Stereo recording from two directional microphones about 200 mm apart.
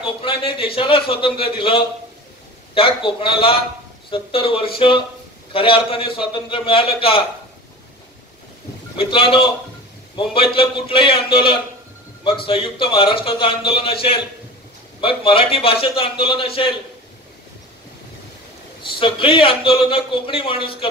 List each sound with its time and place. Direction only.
0.2 s a man's voice: 25° left (ahead or behind)
8.9 s a man's voice: 25° left (ahead or behind)
18.8 s a man's voice: 25° left (ahead or behind)